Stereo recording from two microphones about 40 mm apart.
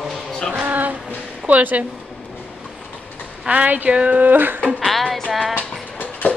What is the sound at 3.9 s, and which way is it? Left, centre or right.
Speech, right.